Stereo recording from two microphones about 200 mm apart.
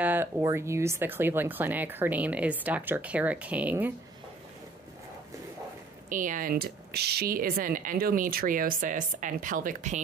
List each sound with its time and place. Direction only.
0.0 s speech: 10° right (ahead or behind)
6.0 s speech: 40° right (ahead or behind)